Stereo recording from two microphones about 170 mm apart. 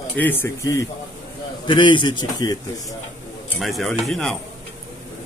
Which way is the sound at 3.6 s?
Centre (ahead or behind).